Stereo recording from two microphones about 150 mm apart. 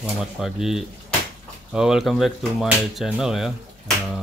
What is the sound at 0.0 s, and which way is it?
Speech, 5° right (ahead or behind).